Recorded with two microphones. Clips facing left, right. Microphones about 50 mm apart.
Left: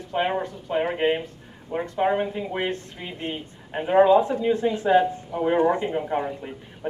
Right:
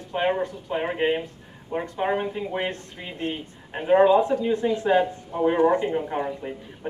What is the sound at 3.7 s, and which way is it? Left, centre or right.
Speech, centre.